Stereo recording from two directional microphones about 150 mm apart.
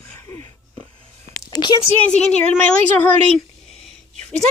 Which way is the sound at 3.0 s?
Centre (ahead or behind).